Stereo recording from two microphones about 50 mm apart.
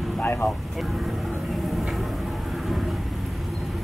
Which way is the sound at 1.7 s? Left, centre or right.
Centre.